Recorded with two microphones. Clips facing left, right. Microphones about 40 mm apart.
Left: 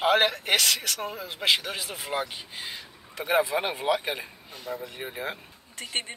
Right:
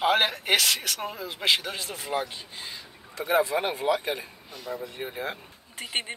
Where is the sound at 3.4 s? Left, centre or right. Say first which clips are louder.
Right 1 dB; centre.